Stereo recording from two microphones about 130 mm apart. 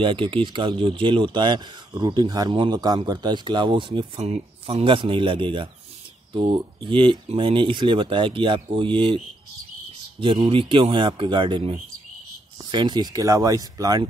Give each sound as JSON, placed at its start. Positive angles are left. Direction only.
{"t": 0.0, "sound": "speech", "side_deg": -40}
{"t": 4.2, "sound": "speech", "side_deg": -50}
{"t": 10.2, "sound": "speech", "side_deg": -40}
{"t": 12.7, "sound": "speech", "side_deg": -35}